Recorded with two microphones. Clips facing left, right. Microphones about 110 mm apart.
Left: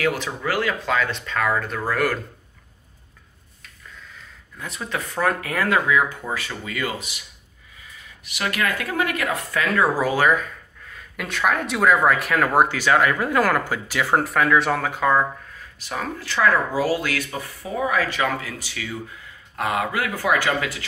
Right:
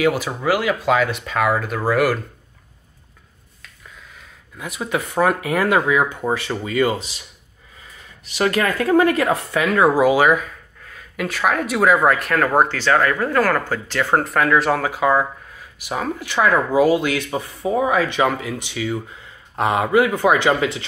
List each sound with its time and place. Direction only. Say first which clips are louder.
0.0 s speech: right 5 dB; 15° right (ahead or behind)
4.6 s speech: right 5 dB; 10° right (ahead or behind); by 7.2 s 30° right (ahead or behind)
8.3 s speech: right 6 dB; 35° right (ahead or behind); by 10.4 s 10° right (ahead or behind)
10.9 s speech: right 6 dB; centre (ahead or behind); by 20.8 s 25° right (ahead or behind)